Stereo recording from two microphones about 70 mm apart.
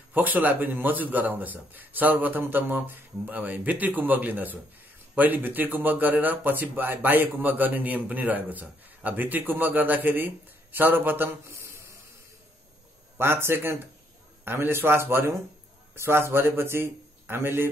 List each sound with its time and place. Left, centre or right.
0.1 s speech: right
13.2 s a man's voice: right